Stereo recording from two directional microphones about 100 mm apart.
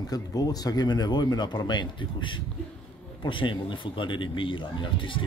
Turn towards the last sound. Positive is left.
turn(degrees=60)  # may be behind; listen again after turning